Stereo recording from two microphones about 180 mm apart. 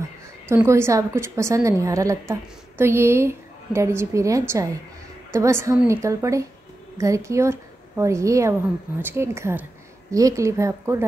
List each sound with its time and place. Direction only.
0.5 s a woman's voice: 15° right (ahead or behind)